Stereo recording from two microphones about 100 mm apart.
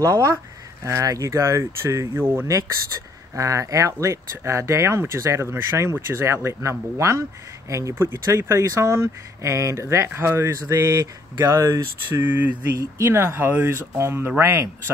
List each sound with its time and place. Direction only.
0.0 s speech: 30° right (ahead or behind)
3.3 s speech: 30° right (ahead or behind)
12.7 s speech: 30° right (ahead or behind)